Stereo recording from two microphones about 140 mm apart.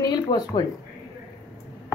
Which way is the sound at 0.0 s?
30° left (ahead or behind).